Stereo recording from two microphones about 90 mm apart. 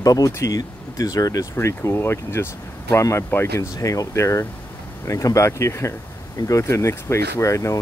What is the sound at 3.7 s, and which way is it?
Speech, 40° left (ahead or behind).